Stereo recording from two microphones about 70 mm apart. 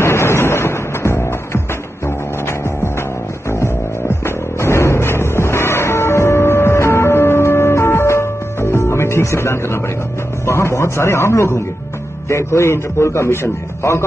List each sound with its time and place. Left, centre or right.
0.0 s music: left
10.4 s a man's voice: left